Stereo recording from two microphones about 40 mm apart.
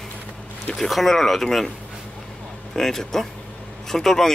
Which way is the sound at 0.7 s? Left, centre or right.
Centre.